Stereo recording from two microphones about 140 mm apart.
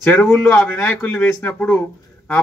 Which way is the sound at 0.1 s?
15° left (ahead or behind).